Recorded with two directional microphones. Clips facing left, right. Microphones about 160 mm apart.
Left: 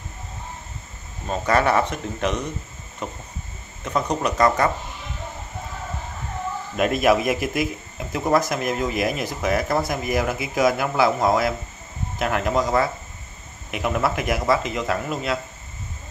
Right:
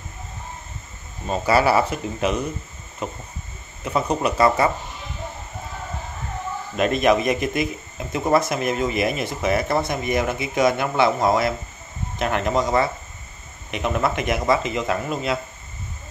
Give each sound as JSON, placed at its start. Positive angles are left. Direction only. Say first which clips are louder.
{"t": 1.2, "sound": "speech", "louder": "right 2 dB", "side_deg": -5}
{"t": 6.8, "sound": "speech", "louder": "even", "side_deg": 5}